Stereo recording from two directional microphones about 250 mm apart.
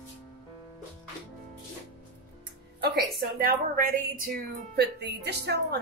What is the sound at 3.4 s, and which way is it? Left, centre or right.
Speech, right.